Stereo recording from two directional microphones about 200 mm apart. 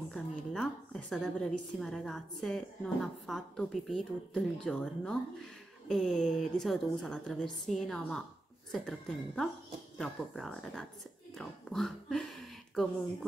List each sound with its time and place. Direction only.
0.1 s a woman's voice: 5° left (ahead or behind)